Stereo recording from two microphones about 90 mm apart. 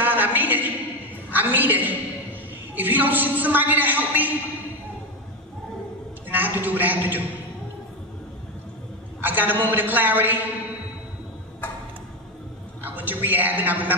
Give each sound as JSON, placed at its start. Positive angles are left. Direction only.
{"t": 0.0, "sound": "a woman's voice", "side_deg": -20}
{"t": 6.2, "sound": "a man's voice", "side_deg": -20}
{"t": 9.2, "sound": "a man's voice", "side_deg": -20}
{"t": 11.6, "sound": "a sound", "side_deg": 20}
{"t": 12.8, "sound": "a man's voice", "side_deg": -20}